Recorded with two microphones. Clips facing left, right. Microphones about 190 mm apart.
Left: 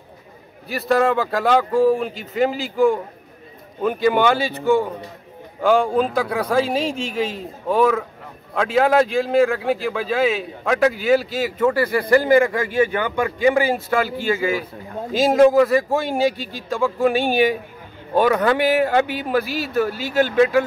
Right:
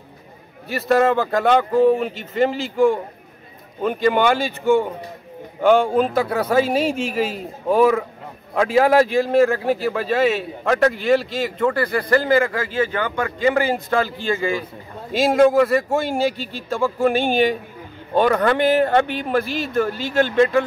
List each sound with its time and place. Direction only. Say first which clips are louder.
0.7 s speech: right 1 dB; centre (ahead or behind)
4.2 s speech: even; 10° right (ahead or behind)